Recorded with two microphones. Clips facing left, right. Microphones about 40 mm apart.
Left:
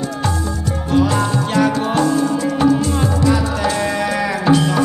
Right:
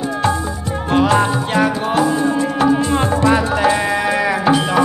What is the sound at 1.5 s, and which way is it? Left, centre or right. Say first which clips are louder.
Music: even; centre.